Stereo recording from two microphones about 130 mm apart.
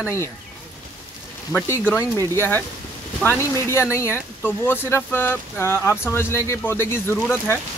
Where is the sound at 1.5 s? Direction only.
15° left (ahead or behind).